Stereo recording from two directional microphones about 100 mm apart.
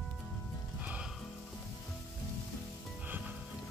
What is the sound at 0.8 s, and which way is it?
Music, 15° right (ahead or behind).